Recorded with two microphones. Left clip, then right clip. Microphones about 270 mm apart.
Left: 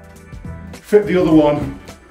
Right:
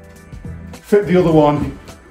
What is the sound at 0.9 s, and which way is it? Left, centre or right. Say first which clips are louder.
Speech: even; centre.